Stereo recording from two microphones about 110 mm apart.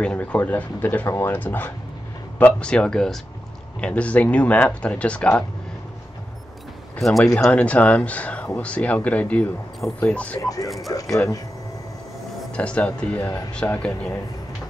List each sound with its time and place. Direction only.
0.0 s speech: 10° left (ahead or behind)
7.0 s speech: centre (ahead or behind)
10.4 s speech: 30° left (ahead or behind)
12.5 s speech: 10° left (ahead or behind)